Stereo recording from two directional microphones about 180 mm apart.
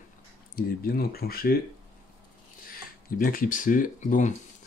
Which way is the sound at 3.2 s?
50° left (ahead or behind).